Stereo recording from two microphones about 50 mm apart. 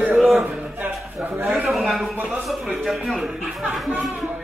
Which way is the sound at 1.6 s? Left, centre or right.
Centre.